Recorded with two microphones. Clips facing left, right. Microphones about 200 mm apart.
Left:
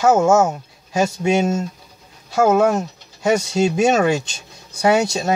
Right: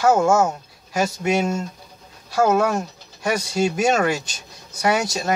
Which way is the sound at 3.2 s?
25° left (ahead or behind).